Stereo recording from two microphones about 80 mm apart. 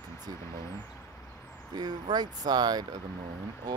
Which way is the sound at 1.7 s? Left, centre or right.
Right.